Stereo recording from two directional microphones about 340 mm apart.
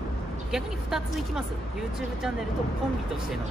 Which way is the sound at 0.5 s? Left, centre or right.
Centre.